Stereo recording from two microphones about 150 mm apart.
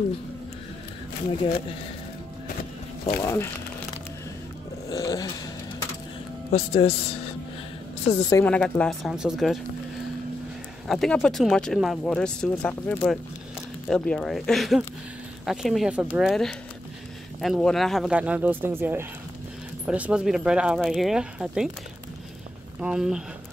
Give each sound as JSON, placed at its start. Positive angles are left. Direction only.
{"t": 3.1, "sound": "speech", "side_deg": 20}
{"t": 4.8, "sound": "a sound", "side_deg": 25}
{"t": 6.5, "sound": "speech", "side_deg": 40}
{"t": 8.1, "sound": "speech", "side_deg": 40}
{"t": 8.5, "sound": "speech", "side_deg": 5}
{"t": 10.9, "sound": "speech", "side_deg": 0}
{"t": 22.8, "sound": "speech", "side_deg": -5}